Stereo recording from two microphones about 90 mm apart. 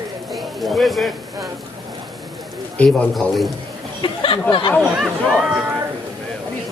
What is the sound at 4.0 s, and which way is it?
Speech, 70° left (ahead or behind).